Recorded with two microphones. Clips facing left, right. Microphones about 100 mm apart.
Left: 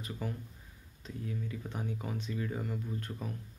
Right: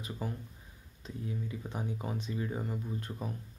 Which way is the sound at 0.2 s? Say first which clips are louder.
Right 1 dB; 30° right (ahead or behind).